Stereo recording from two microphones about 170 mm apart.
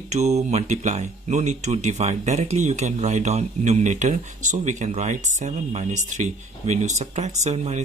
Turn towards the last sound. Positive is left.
turn(degrees=-40)  # may be behind; listen again after turning